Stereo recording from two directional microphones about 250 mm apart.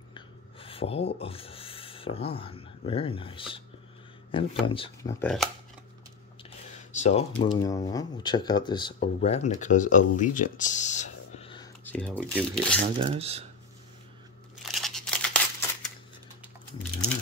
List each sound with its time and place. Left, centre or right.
0.1 s speech: left
5.2 s speech: centre
6.9 s speech: left
11.8 s speech: centre
13.0 s speech: right
14.6 s crumpling: centre